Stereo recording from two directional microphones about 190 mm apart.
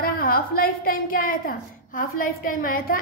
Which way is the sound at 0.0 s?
50° left (ahead or behind).